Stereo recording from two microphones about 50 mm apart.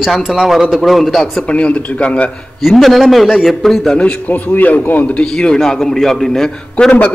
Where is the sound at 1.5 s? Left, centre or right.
Left.